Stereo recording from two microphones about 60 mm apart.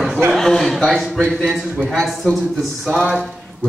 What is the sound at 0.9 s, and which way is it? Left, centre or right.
Speech, centre.